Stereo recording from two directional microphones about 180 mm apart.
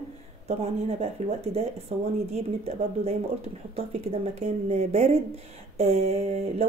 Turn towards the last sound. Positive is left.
turn(degrees=-35)  # may be behind; listen again after turning